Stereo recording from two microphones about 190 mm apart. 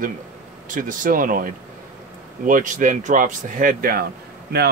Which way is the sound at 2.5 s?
45° right (ahead or behind).